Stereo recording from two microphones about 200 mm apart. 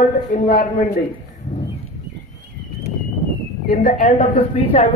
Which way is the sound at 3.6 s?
45° left (ahead or behind).